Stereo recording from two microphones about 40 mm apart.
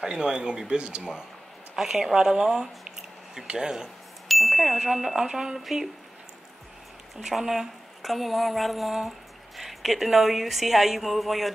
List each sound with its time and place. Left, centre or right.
0.0 s speech: centre
1.8 s a woman's voice: centre
4.3 s a woman's voice: centre
7.2 s a woman's voice: centre